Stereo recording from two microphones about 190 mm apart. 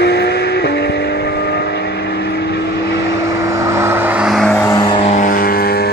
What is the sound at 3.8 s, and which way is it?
Vehicle, 10° right (ahead or behind).